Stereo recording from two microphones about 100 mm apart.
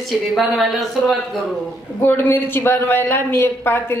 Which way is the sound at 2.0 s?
20° left (ahead or behind).